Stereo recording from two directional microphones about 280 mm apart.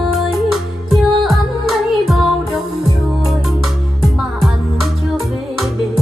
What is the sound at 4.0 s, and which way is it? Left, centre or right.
Music, centre.